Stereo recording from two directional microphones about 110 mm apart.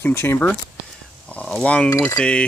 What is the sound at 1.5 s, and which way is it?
Speech, 10° left (ahead or behind).